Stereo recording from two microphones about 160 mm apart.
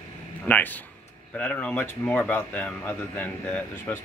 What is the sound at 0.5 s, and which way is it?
Speech, 10° left (ahead or behind).